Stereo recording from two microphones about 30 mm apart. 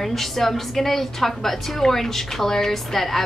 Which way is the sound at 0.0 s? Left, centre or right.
Centre.